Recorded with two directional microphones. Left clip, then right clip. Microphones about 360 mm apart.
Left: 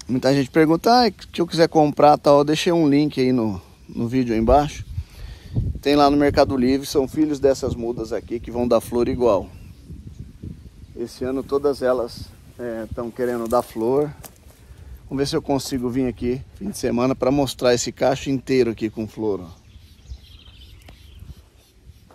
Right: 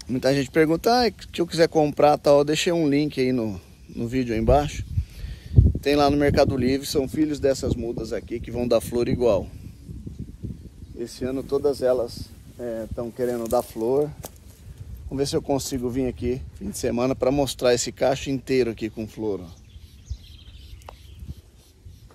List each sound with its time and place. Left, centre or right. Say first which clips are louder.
0.0 s speech: left 3 dB; centre
11.0 s speech: left 3 dB; centre
15.1 s speech: left 2 dB; centre